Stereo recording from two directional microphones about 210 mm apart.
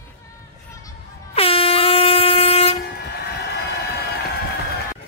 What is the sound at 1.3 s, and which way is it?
Air horn, 25° left (ahead or behind).